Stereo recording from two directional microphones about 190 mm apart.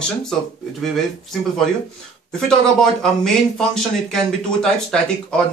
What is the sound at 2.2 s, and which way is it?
A man's voice, 5° left (ahead or behind).